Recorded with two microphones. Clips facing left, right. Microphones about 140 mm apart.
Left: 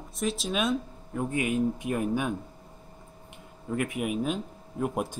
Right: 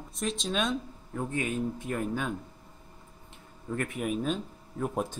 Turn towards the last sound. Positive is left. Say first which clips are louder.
# left 2 dB
turn(degrees=10)  # may be behind; listen again after turning